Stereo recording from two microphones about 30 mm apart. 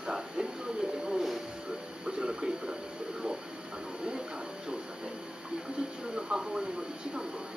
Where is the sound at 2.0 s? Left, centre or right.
Right.